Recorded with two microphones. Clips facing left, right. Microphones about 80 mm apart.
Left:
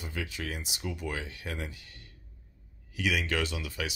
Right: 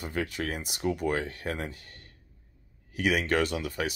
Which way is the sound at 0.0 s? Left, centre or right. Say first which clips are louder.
Right 5 dB; right.